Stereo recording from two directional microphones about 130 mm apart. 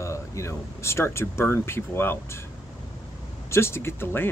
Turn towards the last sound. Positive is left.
turn(degrees=15)  # may be behind; listen again after turning